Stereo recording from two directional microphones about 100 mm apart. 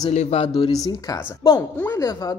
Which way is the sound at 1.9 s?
35° left (ahead or behind).